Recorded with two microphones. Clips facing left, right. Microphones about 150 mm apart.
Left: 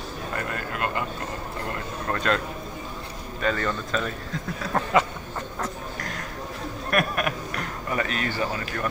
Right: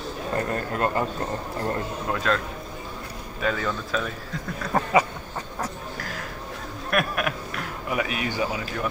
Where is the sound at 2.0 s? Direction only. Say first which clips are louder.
Left 1 dB; 5° right (ahead or behind).